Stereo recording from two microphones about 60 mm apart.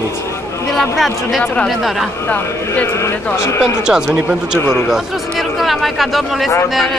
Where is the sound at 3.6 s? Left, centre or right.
Centre.